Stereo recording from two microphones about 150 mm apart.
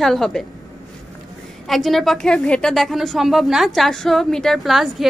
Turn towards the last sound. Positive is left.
turn(degrees=0)  # may be behind; listen again after turning